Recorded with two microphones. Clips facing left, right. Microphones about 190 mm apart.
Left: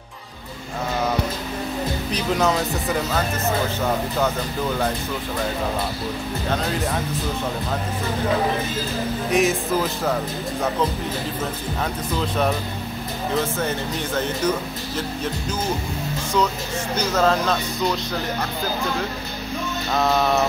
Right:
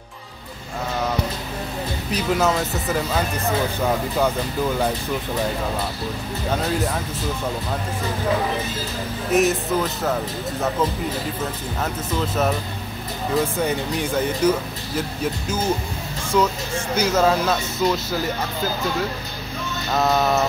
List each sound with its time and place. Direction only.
2.0 s speech: 5° right (ahead or behind)
9.3 s speech: centre (ahead or behind)
11.8 s speech: centre (ahead or behind)
16.3 s speech: 10° right (ahead or behind)
19.9 s speech: centre (ahead or behind)